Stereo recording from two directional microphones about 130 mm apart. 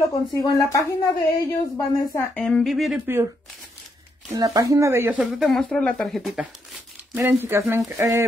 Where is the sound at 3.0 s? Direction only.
15° right (ahead or behind).